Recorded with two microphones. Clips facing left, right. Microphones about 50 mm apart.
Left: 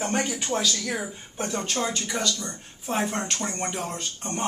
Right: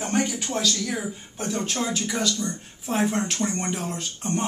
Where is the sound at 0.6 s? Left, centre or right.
Centre.